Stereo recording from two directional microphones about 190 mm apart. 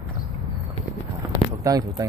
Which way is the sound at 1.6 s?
20° right (ahead or behind).